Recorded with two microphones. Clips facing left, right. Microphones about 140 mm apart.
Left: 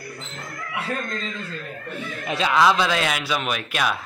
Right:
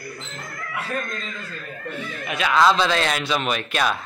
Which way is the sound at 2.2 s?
30° left (ahead or behind).